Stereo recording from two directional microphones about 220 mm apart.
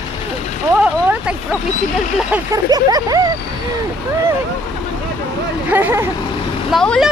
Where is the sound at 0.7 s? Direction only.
5° right (ahead or behind).